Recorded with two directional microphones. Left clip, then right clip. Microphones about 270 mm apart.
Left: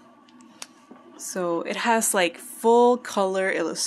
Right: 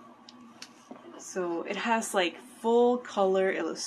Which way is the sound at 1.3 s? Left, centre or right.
Left.